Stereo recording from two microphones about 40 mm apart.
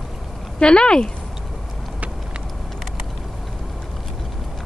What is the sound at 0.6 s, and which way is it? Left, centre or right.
Speech, left.